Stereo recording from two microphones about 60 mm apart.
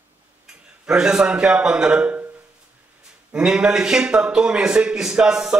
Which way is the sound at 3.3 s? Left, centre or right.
Centre.